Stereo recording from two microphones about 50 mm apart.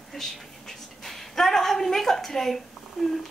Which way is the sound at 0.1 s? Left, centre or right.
Centre.